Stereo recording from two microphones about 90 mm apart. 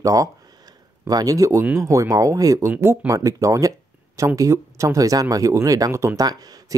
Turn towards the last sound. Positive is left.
turn(degrees=-45)  # may be behind; listen again after turning